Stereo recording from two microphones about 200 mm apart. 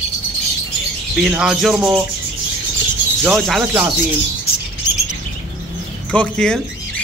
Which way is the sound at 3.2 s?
Centre (ahead or behind).